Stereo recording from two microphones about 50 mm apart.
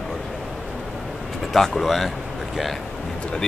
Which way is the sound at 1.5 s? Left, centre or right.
Centre.